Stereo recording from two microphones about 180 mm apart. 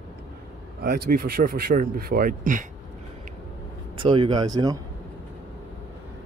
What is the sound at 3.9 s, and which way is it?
Speech, 25° right (ahead or behind).